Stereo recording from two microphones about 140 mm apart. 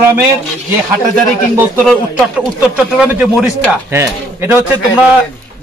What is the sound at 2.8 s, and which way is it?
A man's voice, 10° right (ahead or behind).